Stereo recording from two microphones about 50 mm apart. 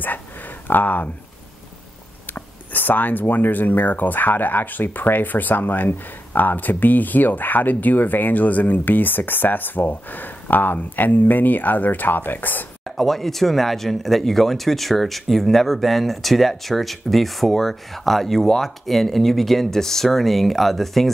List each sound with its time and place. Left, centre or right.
0.7 s speech: left
2.3 s speech: left
12.8 s speech: centre